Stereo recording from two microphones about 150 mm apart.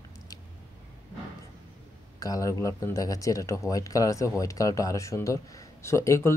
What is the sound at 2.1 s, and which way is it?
Speech, 25° left (ahead or behind).